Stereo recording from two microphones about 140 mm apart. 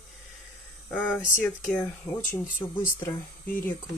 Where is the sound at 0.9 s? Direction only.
10° left (ahead or behind).